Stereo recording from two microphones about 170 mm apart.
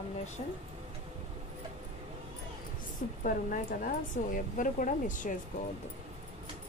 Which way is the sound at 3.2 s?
55° left (ahead or behind).